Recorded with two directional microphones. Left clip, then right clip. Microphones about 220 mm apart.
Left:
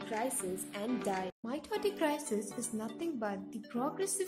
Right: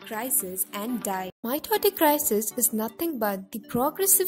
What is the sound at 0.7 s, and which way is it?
A woman's voice, 45° right (ahead or behind).